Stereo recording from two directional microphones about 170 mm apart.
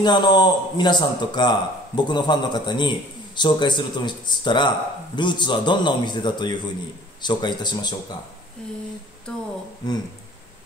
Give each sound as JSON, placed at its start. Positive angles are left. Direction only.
{"t": 0.0, "sound": "speech", "side_deg": 25}